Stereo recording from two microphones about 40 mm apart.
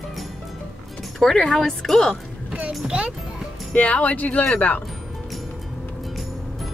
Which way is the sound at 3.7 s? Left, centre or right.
Left.